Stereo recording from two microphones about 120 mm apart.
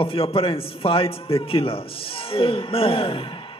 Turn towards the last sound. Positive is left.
turn(degrees=50)  # may be behind; listen again after turning